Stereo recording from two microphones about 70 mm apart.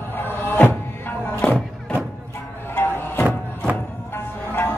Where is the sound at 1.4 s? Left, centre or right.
Centre.